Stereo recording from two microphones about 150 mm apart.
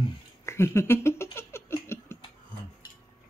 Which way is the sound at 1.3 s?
15° left (ahead or behind).